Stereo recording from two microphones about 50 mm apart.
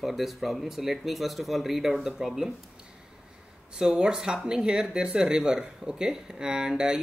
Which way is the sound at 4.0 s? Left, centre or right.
Centre.